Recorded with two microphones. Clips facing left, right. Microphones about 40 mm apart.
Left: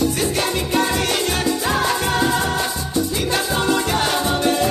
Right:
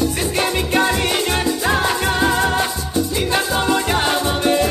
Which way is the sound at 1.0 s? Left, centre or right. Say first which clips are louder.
Right 1 dB; centre.